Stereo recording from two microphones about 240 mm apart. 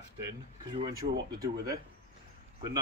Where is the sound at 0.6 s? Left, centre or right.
Centre.